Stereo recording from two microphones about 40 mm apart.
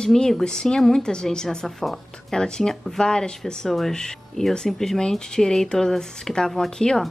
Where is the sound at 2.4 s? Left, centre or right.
Centre.